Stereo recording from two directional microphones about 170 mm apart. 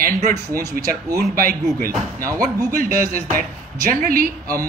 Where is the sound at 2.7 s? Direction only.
55° right (ahead or behind).